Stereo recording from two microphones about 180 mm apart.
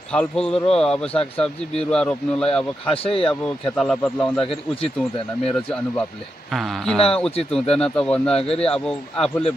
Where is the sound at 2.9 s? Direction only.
30° left (ahead or behind).